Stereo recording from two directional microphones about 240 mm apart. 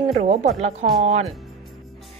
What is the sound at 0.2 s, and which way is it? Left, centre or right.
A woman's voice, right.